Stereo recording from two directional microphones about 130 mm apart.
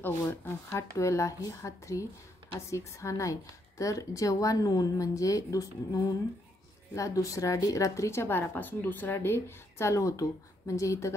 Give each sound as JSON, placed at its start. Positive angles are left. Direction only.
{"t": 0.0, "sound": "speech", "side_deg": 15}